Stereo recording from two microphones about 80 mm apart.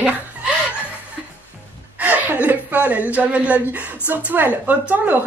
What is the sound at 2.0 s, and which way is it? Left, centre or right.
A woman's voice, right.